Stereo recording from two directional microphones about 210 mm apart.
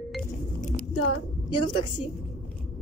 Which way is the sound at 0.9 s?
90° left.